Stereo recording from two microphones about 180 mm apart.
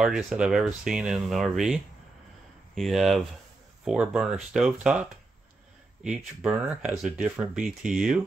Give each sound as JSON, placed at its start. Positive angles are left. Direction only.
{"t": 0.0, "sound": "speech", "side_deg": 0}
{"t": 6.0, "sound": "speech", "side_deg": -5}